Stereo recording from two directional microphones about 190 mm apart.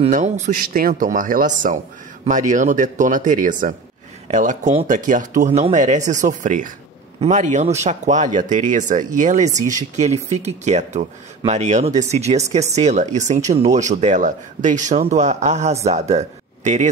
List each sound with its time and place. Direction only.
0.0 s speech: 40° right (ahead or behind)